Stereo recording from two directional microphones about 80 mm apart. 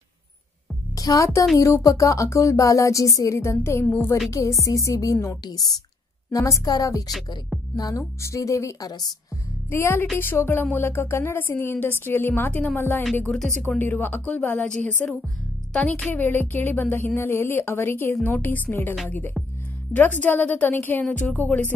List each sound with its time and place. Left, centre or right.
0.9 s a child's voice: left
3.8 s speech: left
4.3 s speech: left
5.4 s a woman's voice: left
6.3 s a woman's voice: left
7.7 s music: left
8.0 s speech: left
8.8 s a woman's voice: left
9.7 s speech: left
13.1 s speech: centre
13.8 s speech: left